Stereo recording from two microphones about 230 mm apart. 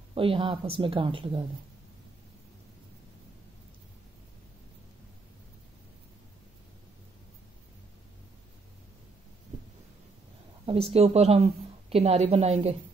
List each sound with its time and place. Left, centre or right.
0.1 s speech: right
10.6 s a woman's voice: right